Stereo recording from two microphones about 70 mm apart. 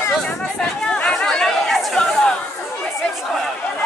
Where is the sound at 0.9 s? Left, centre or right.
Centre.